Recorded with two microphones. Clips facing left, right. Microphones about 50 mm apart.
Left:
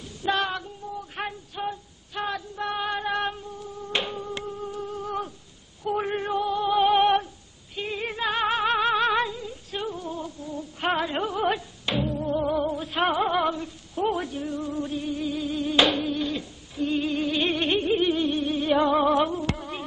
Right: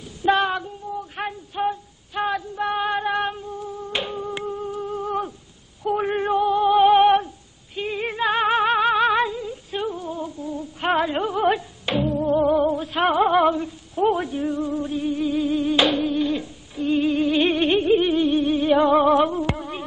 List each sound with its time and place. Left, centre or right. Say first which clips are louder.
0.2 s female singing: right 6 dB; centre
1.2 s a sound: right 2 dB; centre
1.5 s female singing: right 7 dB; centre
3.2 s music: right 3 dB; centre
3.9 s insect: even; centre
4.2 s humming: right 5 dB; centre
6.0 s female singing: right 6 dB; centre
7.7 s music: right 4 dB; centre
12.4 s music: right 7 dB; centre
12.6 s a sound: right 4 dB; centre
13.9 s music: right 5 dB; centre
15.7 s music: even; centre